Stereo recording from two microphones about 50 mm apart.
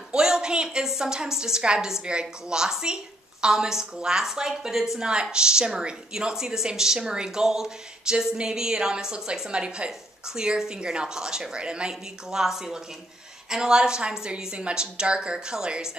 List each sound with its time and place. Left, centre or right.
0.1 s a woman's voice: centre